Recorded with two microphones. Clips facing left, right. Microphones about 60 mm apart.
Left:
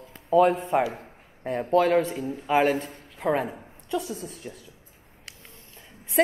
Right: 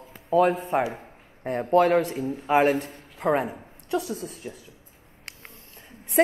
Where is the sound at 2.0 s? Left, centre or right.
Right.